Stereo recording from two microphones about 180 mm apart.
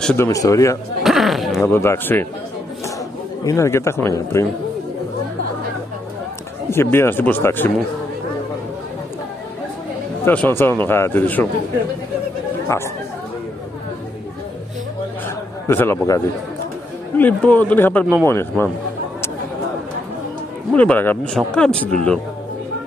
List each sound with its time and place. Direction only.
0.0 s speech: 5° left (ahead or behind)
0.3 s speech: 20° left (ahead or behind)
1.0 s a sound: centre (ahead or behind)
1.6 s speech: 15° left (ahead or behind)
3.4 s speech: 15° left (ahead or behind)
6.7 s speech: 15° left (ahead or behind)
10.2 s speech: 10° left (ahead or behind)
12.6 s speech: 15° left (ahead or behind)
15.2 s a sound: 10° left (ahead or behind)
17.2 s speech: 10° left (ahead or behind)
20.7 s speech: 10° left (ahead or behind)